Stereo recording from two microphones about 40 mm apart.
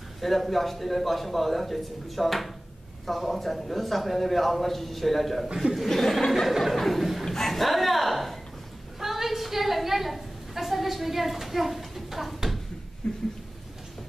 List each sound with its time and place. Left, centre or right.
0.2 s a man's voice: centre
5.9 s chuckle: centre
6.5 s a man's voice: centre
7.2 s bow-wow: centre
9.0 s a sound: centre
13.0 s a sound: centre